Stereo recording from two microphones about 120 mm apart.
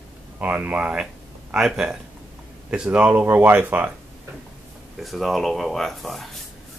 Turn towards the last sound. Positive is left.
turn(degrees=0)  # may be behind; listen again after turning